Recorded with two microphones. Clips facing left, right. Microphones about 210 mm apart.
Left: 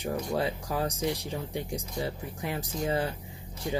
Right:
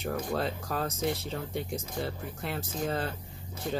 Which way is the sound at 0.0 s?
15° left (ahead or behind).